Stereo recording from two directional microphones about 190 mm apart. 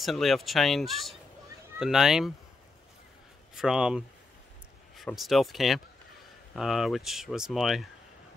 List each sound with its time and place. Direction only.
0.0 s speech: centre (ahead or behind)
3.5 s speech: 5° right (ahead or behind)